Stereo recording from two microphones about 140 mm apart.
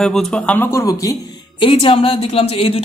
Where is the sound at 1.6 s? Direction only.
40° left (ahead or behind).